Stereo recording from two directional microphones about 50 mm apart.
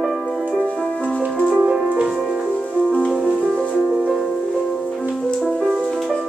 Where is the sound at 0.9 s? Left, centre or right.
Left.